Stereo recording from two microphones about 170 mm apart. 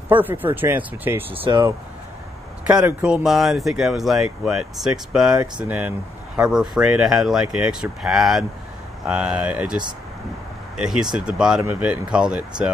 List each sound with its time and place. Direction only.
0.1 s speech: 10° right (ahead or behind)
1.4 s speech: 25° right (ahead or behind)
2.7 s speech: 5° right (ahead or behind)
10.8 s speech: centre (ahead or behind)